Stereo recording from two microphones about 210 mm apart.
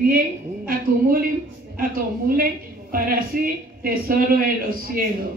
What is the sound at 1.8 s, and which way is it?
A woman's voice, 45° right (ahead or behind).